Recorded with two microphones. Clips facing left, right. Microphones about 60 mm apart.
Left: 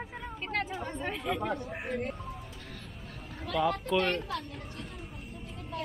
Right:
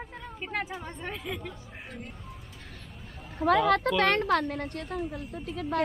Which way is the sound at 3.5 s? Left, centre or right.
Right.